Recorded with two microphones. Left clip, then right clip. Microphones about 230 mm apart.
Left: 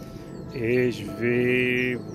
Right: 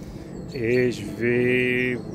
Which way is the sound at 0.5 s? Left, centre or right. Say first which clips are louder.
Right 2 dB; centre.